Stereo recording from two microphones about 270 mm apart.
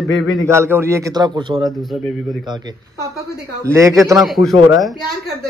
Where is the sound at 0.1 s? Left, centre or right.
Left.